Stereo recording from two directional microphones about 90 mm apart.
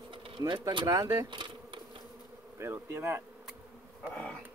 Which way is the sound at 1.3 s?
60° right (ahead or behind).